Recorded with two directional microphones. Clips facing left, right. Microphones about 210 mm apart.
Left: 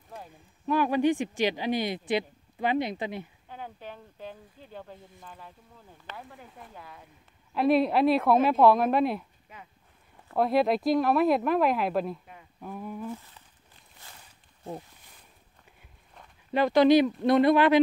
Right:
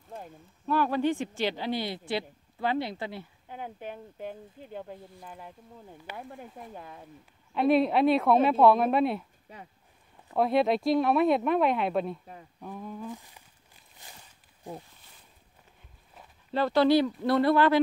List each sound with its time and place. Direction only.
0.7 s speech: 15° left (ahead or behind)
3.4 s speech: 15° right (ahead or behind)
6.6 s speech: 25° right (ahead or behind)
7.5 s speech: centre (ahead or behind)
9.5 s speech: 35° right (ahead or behind)
10.3 s speech: centre (ahead or behind)
13.1 s speech: 15° right (ahead or behind)
14.0 s walk: 15° right (ahead or behind)
16.5 s speech: 15° left (ahead or behind)